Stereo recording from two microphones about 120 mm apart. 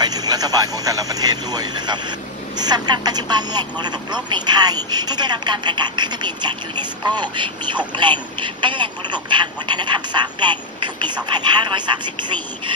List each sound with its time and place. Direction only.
0.0 s speech: 35° right (ahead or behind)